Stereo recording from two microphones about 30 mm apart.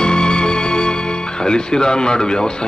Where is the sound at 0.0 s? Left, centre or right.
Left.